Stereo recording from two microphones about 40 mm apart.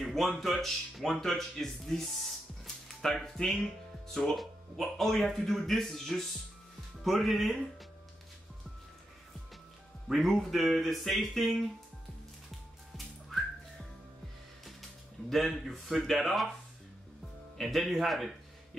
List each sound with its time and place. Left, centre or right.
0.0 s a sound: centre
0.4 s speech: centre
3.4 s speech: left
4.1 s speech: centre
10.1 s speech: centre
14.6 s speech: centre
17.6 s speech: centre